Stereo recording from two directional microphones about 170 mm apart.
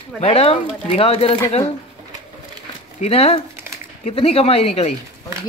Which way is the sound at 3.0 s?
35° left (ahead or behind).